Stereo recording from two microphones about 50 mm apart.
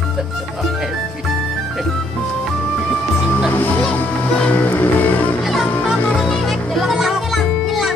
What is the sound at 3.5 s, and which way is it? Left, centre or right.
Music, left.